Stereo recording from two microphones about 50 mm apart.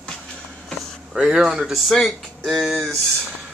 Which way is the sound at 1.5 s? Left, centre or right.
Centre.